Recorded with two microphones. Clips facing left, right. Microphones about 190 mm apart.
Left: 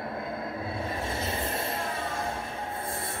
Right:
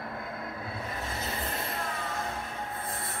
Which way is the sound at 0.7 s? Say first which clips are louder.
Left 4 dB; 25° left (ahead or behind).